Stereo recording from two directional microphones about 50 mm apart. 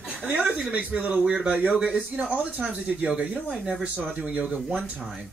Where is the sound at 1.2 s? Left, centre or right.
Centre.